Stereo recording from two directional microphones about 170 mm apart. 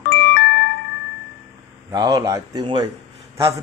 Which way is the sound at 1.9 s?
25° right (ahead or behind).